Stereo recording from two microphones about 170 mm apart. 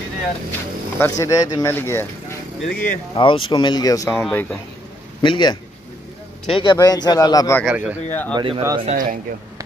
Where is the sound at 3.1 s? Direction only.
30° left (ahead or behind); by 4.6 s 10° left (ahead or behind).